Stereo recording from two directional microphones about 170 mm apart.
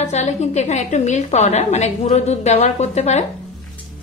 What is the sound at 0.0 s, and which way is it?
A woman's voice, 40° left (ahead or behind).